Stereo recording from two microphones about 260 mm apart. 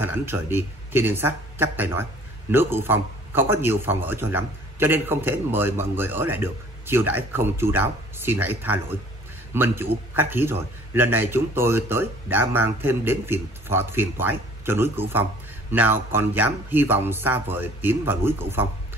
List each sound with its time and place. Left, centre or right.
0.0 s speech: centre